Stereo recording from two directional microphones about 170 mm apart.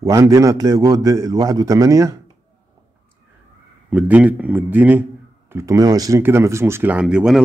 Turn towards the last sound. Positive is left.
turn(degrees=-5)  # may be behind; listen again after turning